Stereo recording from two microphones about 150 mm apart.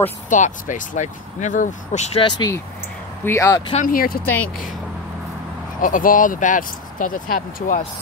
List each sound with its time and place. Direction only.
0.3 s speech: 60° left (ahead or behind)
2.2 s speech: 25° left (ahead or behind)
3.8 s speech: 75° left (ahead or behind)
5.8 s speech: 65° left (ahead or behind)